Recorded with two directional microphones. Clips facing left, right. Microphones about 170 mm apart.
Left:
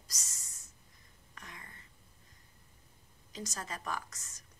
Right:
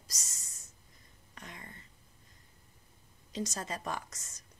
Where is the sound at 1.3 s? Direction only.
25° right (ahead or behind).